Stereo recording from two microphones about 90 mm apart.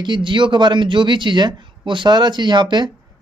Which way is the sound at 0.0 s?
60° right (ahead or behind).